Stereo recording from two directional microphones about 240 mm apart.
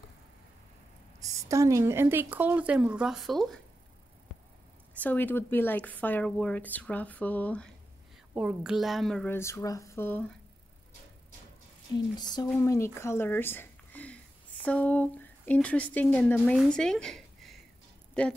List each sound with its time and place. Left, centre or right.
1.2 s a woman's voice: centre
5.0 s a woman's voice: centre
11.9 s a woman's voice: centre